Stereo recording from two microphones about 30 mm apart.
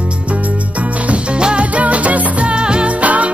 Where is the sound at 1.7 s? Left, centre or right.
Right.